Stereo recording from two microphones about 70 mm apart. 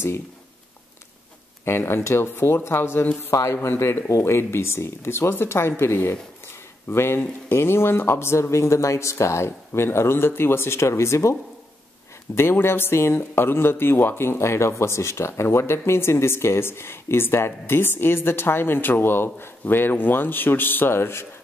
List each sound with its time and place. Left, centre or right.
1.6 s speech: left
12.4 s speech: left